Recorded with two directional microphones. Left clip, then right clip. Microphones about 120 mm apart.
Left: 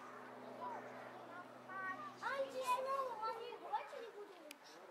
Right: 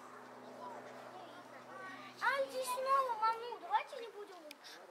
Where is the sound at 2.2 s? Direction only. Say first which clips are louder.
Right 6 dB; 15° left (ahead or behind).